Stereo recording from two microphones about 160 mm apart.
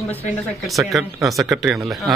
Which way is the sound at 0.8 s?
Centre (ahead or behind).